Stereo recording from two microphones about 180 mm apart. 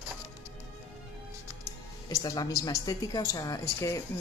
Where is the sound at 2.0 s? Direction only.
20° left (ahead or behind).